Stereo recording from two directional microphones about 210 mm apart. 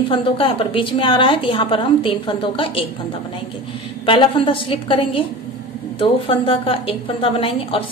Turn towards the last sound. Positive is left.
turn(degrees=25)  # may be behind; listen again after turning